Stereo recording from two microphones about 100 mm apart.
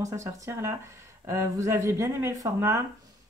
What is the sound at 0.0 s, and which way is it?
Speech, 30° right (ahead or behind).